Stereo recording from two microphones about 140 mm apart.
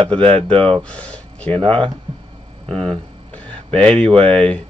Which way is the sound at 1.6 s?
40° right (ahead or behind).